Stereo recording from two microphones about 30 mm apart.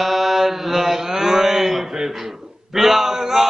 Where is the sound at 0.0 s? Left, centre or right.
Centre.